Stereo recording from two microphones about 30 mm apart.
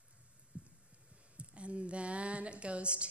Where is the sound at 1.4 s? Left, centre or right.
Right.